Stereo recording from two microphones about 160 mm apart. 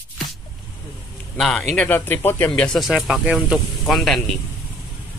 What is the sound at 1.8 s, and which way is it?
Speech, 10° left (ahead or behind).